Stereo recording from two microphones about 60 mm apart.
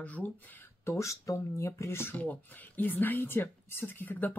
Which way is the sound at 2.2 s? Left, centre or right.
Left.